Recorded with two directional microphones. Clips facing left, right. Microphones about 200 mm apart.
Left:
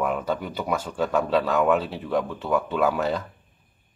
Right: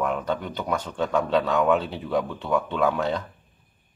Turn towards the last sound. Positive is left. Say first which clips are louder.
# left 1 dB
turn(degrees=5)  # may be behind; listen again after turning